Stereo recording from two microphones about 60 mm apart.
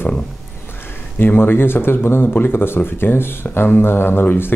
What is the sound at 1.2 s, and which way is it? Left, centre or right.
Speech, left.